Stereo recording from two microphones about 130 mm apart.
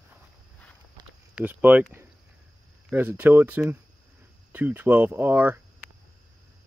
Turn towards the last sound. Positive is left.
turn(degrees=-15)  # may be behind; listen again after turning